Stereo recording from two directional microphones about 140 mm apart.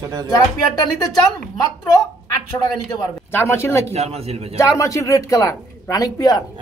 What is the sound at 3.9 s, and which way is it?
Speech, 50° right (ahead or behind).